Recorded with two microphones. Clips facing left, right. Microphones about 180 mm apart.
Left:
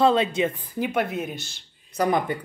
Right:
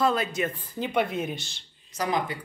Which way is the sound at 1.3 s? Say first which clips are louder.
Left 2 dB; 50° left (ahead or behind).